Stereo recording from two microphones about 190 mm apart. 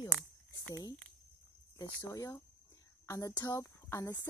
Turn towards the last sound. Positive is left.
turn(degrees=15)  # may be behind; listen again after turning